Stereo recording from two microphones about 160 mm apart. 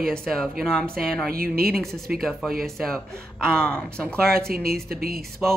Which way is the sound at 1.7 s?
5° left (ahead or behind).